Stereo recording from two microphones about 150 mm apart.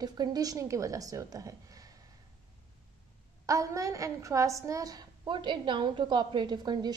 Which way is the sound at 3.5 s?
20° right (ahead or behind).